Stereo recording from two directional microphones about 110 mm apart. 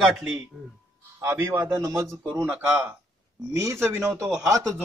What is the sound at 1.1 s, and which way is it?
Speech, 25° right (ahead or behind).